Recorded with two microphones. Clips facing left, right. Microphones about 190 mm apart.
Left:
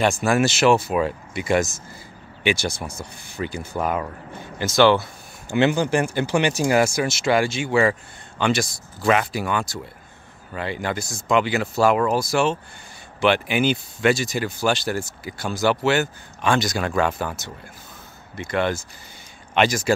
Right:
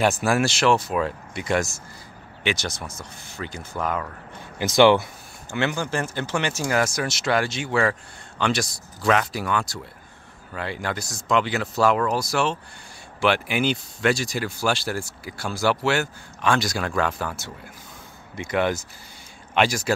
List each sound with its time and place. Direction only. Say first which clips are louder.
0.2 s speech: left 3 dB; centre (ahead or behind)
4.6 s speech: right 1 dB; 15° right (ahead or behind)
5.5 s speech: left 6 dB; 20° left (ahead or behind)
18.3 s speech: even; 10° right (ahead or behind)